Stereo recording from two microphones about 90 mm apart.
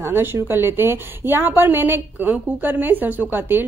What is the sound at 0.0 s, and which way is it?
A woman's voice, 25° right (ahead or behind).